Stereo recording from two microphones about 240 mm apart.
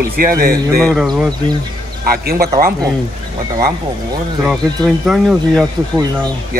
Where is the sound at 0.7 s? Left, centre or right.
Centre.